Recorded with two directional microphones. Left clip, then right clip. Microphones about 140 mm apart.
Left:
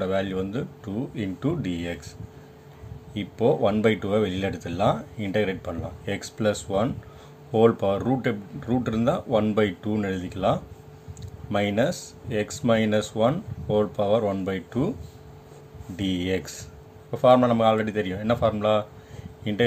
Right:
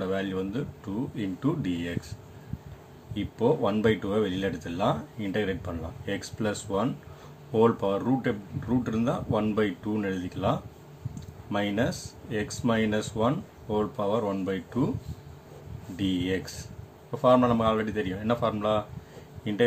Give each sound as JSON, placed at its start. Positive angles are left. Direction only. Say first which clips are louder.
{"t": 0.0, "sound": "speech", "louder": "left 4 dB", "side_deg": 45}
{"t": 3.2, "sound": "speech", "louder": "left 3 dB", "side_deg": 45}
{"t": 16.0, "sound": "speech", "louder": "left 2 dB", "side_deg": 50}